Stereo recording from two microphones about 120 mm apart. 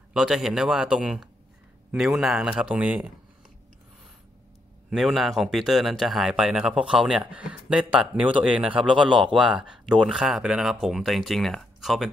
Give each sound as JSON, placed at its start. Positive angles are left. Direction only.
{"t": 0.1, "sound": "speech", "side_deg": -5}
{"t": 4.8, "sound": "speech", "side_deg": 0}